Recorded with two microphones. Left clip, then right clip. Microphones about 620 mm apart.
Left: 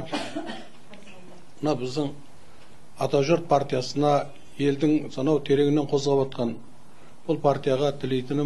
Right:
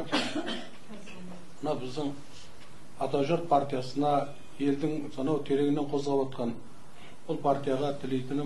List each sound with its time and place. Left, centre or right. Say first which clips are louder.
1.6 s speech: left 6 dB; left